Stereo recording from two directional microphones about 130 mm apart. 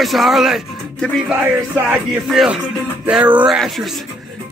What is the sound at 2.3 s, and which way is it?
Speech, 5° right (ahead or behind).